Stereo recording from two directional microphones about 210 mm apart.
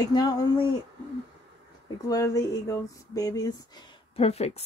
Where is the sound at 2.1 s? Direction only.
15° left (ahead or behind).